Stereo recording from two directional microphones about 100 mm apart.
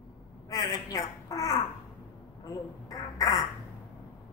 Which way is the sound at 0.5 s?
35° left (ahead or behind).